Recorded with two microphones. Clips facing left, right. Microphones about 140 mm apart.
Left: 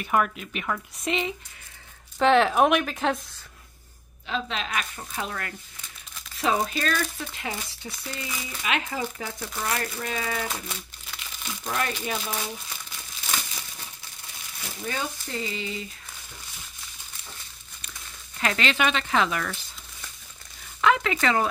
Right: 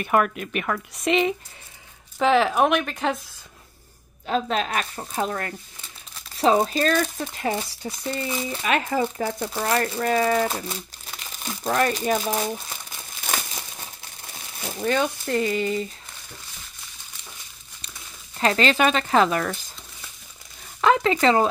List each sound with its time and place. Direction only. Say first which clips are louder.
0.0 s speech: right 3 dB; 55° right (ahead or behind)
2.1 s speech: even; centre (ahead or behind)
4.3 s speech: right 6 dB; 45° right (ahead or behind)
8.3 s speech: right 9 dB; 30° right (ahead or behind)
8.6 s speech: right 5 dB; 45° right (ahead or behind)
14.8 s speech: right 9 dB; 65° right (ahead or behind); by 15.9 s 50° right (ahead or behind)
18.4 s speech: right 5 dB; 35° right (ahead or behind)
20.8 s speech: right 4 dB; 35° right (ahead or behind)